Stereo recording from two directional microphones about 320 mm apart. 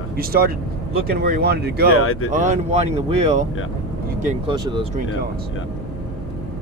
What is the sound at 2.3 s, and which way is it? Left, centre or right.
Speech, right.